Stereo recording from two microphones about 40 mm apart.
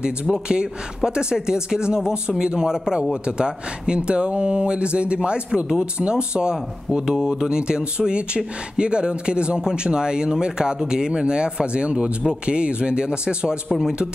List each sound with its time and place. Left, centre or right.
0.0 s speech: right